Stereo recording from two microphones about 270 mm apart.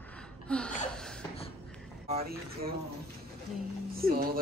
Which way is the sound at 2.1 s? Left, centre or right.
Right.